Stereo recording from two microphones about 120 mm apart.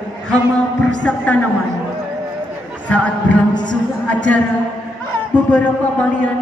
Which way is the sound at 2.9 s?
10° left (ahead or behind).